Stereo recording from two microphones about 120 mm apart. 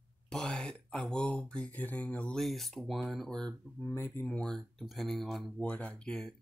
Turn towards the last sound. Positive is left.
turn(degrees=5)  # may be behind; listen again after turning